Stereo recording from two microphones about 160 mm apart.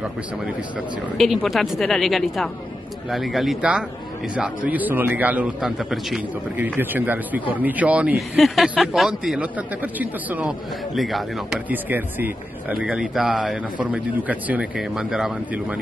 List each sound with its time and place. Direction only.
0.7 s a man's voice: centre (ahead or behind)
11.0 s speech: centre (ahead or behind)
11.7 s a man's voice: 10° right (ahead or behind)